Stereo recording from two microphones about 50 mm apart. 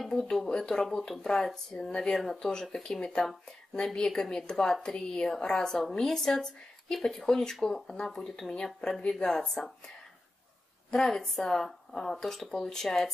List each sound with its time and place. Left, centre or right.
0.1 s speech: centre
10.9 s speech: centre